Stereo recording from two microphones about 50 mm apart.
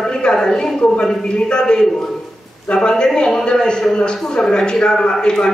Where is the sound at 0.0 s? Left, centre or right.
Centre.